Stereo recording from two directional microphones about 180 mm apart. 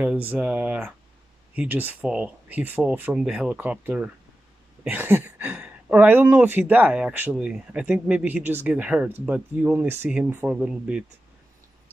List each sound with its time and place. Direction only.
0.0 s speech: 10° right (ahead or behind)